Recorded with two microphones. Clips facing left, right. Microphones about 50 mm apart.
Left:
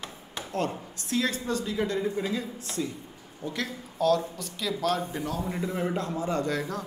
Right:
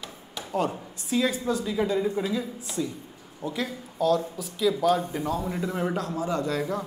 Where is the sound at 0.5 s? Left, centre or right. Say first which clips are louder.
Right 3 dB; centre.